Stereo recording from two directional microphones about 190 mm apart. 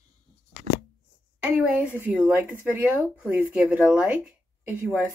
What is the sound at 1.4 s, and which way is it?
A woman's voice, 5° right (ahead or behind).